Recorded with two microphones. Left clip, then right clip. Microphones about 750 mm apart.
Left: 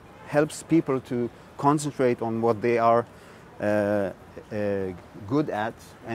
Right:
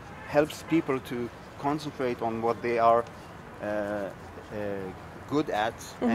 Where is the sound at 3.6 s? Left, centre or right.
Left.